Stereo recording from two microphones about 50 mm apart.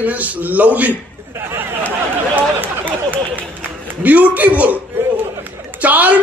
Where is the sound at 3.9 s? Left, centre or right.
Right.